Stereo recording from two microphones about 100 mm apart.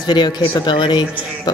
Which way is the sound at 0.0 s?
45° left (ahead or behind).